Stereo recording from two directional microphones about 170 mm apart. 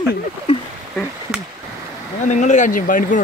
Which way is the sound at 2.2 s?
45° left (ahead or behind).